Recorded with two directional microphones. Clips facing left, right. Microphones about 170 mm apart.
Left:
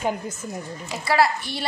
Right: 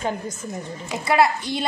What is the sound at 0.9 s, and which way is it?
Speech, 20° right (ahead or behind).